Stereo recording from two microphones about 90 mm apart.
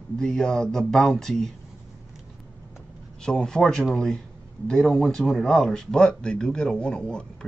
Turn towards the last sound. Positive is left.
turn(degrees=10)  # may be behind; listen again after turning